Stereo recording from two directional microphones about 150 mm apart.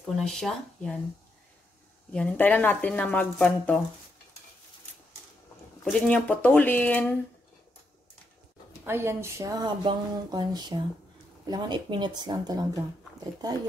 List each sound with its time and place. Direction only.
0.0 s speech: 5° left (ahead or behind)
2.1 s speech: 10° left (ahead or behind)
5.9 s speech: 5° left (ahead or behind)
8.8 s speech: 15° right (ahead or behind)